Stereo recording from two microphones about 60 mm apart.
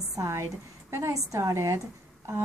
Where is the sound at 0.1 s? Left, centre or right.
Right.